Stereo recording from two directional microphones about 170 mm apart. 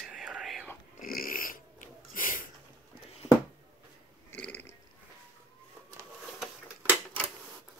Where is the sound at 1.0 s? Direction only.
55° left (ahead or behind).